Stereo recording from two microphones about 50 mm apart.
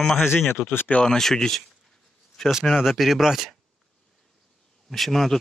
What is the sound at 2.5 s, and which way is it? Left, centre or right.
Speech, centre.